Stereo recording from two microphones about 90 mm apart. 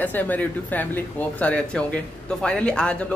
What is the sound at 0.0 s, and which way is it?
Speech, 20° left (ahead or behind).